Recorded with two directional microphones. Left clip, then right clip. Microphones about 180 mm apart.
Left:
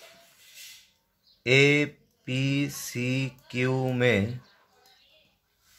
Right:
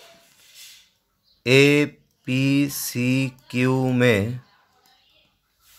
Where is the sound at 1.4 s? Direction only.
30° right (ahead or behind).